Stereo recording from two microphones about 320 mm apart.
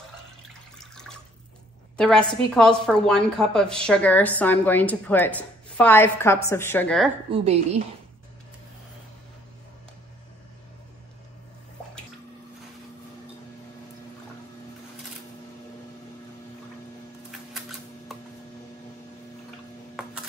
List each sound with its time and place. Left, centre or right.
0.7 s water: centre
2.0 s a woman's voice: centre
7.2 s a woman's voice: centre
17.6 s a sound: centre